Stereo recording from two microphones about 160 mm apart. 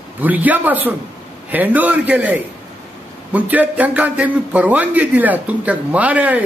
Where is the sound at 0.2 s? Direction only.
10° right (ahead or behind).